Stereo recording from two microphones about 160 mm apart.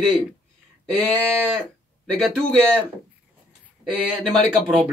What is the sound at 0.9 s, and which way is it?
Speech, 5° left (ahead or behind).